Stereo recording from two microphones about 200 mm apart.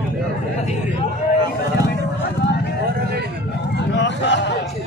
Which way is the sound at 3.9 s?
60° left (ahead or behind).